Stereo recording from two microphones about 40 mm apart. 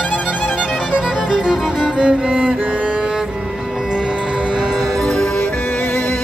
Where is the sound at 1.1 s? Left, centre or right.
Centre.